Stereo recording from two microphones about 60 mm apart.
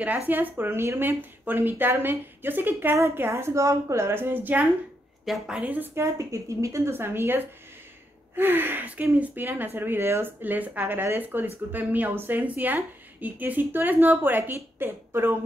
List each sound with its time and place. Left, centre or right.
0.0 s a woman's voice: right
1.4 s a woman's voice: right
3.0 s a woman's voice: right
5.3 s a woman's voice: centre
5.6 s speech: right
5.9 s speech: right
6.9 s a woman's voice: right
10.4 s a woman's voice: right